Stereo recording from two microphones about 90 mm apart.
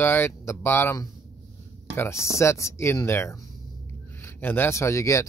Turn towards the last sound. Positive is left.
turn(degrees=35)  # may be behind; listen again after turning